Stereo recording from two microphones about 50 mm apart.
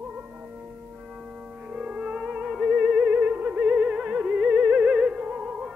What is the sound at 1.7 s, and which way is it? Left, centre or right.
Music, centre.